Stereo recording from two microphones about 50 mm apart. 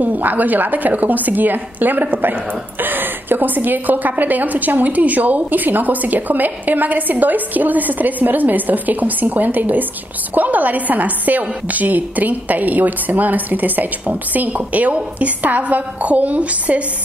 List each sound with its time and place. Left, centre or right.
0.0 s a woman's voice: right